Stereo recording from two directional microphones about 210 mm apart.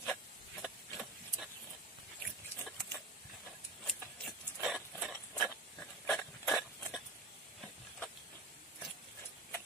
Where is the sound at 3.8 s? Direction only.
Centre (ahead or behind).